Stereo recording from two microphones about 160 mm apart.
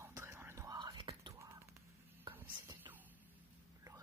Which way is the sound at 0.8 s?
30° right (ahead or behind).